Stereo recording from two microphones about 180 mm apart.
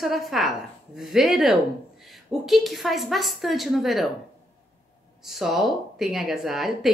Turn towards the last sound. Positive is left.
turn(degrees=0)  # may be behind; listen again after turning